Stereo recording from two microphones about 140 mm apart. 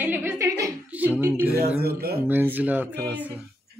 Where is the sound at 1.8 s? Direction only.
90° right.